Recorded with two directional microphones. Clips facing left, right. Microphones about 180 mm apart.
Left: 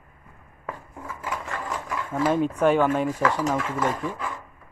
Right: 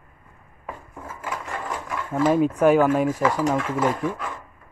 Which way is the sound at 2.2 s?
5° right (ahead or behind).